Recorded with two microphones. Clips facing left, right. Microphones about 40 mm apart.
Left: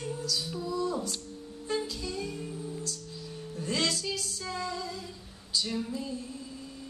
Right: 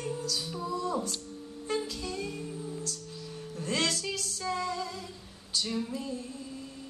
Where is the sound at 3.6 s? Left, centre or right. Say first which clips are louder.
Even; right.